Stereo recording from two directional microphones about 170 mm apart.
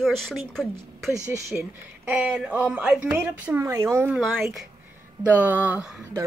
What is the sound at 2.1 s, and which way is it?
Speech, 5° right (ahead or behind).